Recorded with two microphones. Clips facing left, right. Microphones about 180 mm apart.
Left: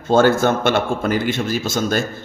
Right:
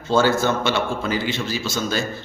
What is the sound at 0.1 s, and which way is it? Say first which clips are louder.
A man's voice: left 4 dB; 55° left (ahead or behind).